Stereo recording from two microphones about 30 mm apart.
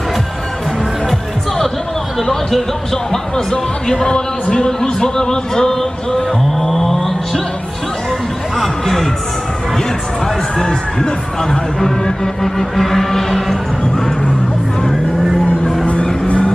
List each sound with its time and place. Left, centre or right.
3.1 s speech: left
6.6 s a sound: centre
8.5 s music: centre
10.2 s speech: left
12.5 s music: centre